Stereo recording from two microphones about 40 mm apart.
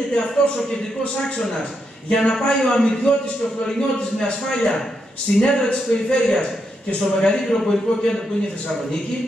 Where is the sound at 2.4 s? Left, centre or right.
Centre.